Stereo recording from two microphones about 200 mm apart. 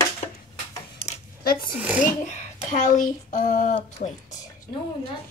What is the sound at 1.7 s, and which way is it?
Speech, 10° right (ahead or behind).